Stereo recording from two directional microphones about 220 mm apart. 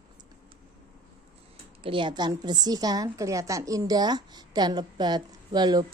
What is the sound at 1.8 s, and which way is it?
A woman's voice, 20° right (ahead or behind).